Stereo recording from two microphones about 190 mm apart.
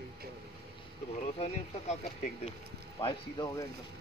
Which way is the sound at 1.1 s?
35° left (ahead or behind).